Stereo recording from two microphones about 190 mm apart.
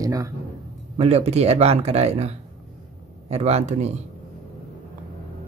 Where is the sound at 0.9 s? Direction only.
35° right (ahead or behind).